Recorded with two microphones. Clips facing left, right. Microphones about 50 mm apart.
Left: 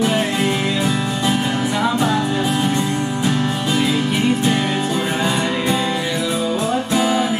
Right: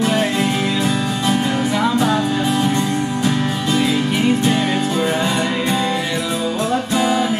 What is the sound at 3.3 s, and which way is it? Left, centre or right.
Music, centre.